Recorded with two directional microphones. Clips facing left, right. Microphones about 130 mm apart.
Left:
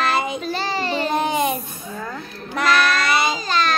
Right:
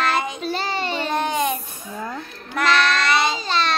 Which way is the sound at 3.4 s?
30° right (ahead or behind).